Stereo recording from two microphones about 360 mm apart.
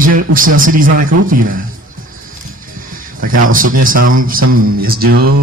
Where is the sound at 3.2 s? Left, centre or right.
Right.